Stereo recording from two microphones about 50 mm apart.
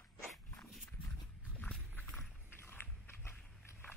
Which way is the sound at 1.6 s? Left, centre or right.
Left.